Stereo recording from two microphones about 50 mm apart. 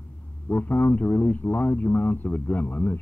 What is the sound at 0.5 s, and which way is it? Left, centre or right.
A man's voice, left.